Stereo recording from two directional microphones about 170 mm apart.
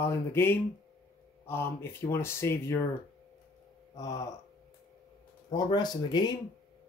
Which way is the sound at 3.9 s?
20° left (ahead or behind).